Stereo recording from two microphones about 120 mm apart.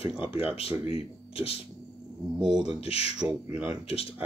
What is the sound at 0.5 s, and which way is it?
Speech, 50° left (ahead or behind).